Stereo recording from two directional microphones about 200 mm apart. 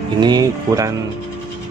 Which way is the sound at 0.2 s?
20° right (ahead or behind).